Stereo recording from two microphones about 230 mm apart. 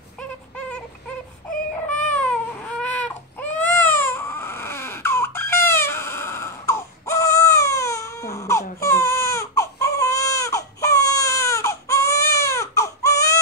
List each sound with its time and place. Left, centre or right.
0.6 s synthetic singing: centre
1.5 s baby cry: left
2.1 s baby cry: centre